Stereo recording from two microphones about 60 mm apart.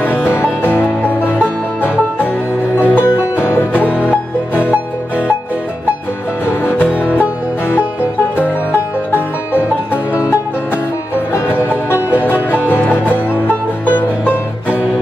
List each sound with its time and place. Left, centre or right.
0.0 s music: left
2.8 s music: left
3.9 s music: right
12.6 s music: left